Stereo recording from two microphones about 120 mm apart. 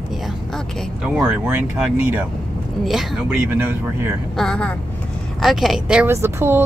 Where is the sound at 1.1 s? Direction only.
10° right (ahead or behind).